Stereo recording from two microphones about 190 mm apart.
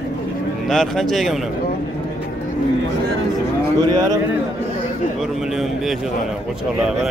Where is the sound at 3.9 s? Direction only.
20° right (ahead or behind).